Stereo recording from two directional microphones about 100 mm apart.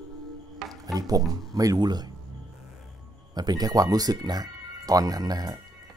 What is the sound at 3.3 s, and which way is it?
Speech, 45° right (ahead or behind).